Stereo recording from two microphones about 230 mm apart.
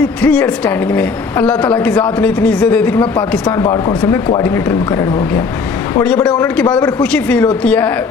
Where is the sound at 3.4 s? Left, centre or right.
Centre.